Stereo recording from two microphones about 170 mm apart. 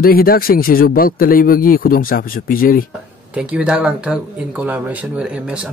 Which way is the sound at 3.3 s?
5° right (ahead or behind).